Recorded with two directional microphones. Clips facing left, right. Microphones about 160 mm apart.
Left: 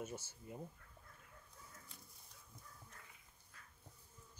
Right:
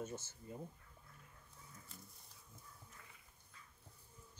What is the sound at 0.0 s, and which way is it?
Speech, 10° left (ahead or behind).